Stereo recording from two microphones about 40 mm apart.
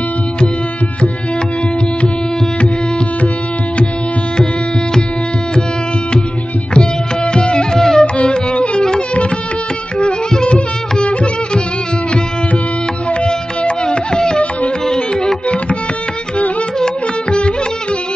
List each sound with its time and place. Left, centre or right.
6.7 s music: left
10.3 s music: left
13.1 s music: left
15.4 s music: left
16.8 s music: left